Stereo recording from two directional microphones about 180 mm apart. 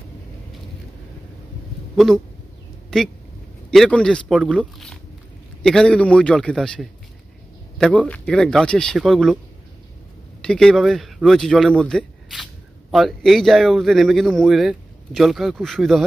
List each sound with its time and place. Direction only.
2.0 s speech: centre (ahead or behind)
10.4 s speech: 5° left (ahead or behind)